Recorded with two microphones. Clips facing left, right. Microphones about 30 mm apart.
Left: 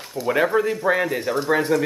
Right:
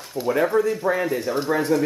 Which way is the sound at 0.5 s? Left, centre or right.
Left.